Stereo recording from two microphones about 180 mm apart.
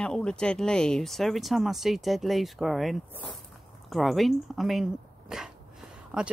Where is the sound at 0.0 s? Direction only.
5° left (ahead or behind).